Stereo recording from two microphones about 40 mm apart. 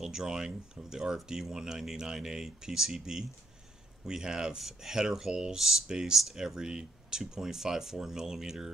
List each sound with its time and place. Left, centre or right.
0.0 s speech: centre